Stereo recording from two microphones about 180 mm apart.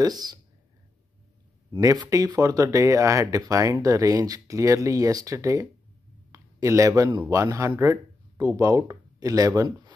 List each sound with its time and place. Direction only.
0.0 s speech: 20° right (ahead or behind)
1.7 s speech: 20° right (ahead or behind)